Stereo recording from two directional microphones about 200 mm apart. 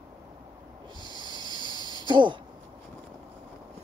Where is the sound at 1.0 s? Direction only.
20° right (ahead or behind).